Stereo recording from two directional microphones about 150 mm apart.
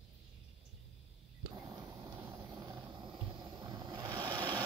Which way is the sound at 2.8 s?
30° right (ahead or behind).